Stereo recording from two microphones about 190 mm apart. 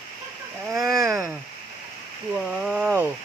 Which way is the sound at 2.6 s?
10° right (ahead or behind).